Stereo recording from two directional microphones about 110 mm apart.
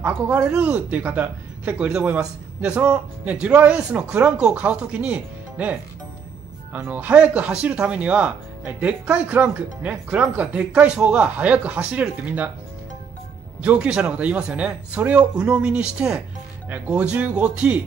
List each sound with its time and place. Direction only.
0.0 s speech: 15° right (ahead or behind)
13.6 s speech: 10° right (ahead or behind)